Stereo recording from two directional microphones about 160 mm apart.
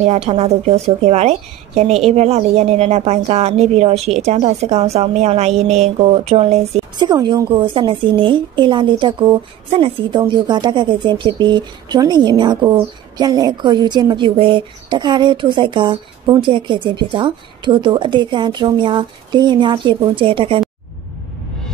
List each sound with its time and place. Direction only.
0.0 s speech: 40° right (ahead or behind)
7.1 s a woman's voice: 25° right (ahead or behind)